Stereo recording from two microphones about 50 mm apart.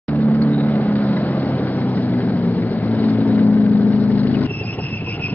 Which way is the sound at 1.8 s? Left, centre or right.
Left.